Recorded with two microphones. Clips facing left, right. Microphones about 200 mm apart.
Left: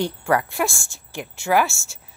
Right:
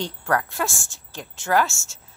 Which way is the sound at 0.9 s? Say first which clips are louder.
Left 5 dB; 10° left (ahead or behind).